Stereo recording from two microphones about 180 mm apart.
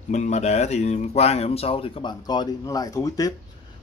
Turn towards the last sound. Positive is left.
turn(degrees=20)  # may be behind; listen again after turning